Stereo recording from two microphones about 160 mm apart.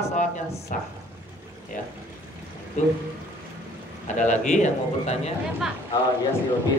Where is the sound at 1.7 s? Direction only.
55° left (ahead or behind).